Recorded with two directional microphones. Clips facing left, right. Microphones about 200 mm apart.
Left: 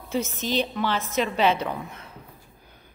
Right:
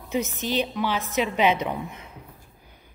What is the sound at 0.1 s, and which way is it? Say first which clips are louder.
A woman's voice: even; 15° right (ahead or behind).